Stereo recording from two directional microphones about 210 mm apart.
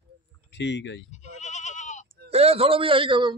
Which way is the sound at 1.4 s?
35° left (ahead or behind).